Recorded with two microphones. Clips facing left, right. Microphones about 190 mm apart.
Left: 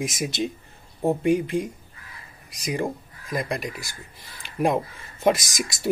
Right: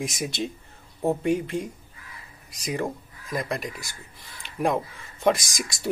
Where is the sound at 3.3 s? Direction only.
Centre (ahead or behind).